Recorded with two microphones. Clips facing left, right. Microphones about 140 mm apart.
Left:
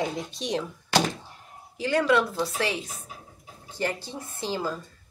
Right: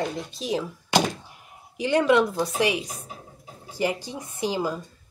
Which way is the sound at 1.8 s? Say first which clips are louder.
Right 3 dB; 20° right (ahead or behind).